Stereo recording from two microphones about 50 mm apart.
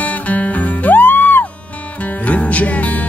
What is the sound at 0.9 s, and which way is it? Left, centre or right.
Music, left.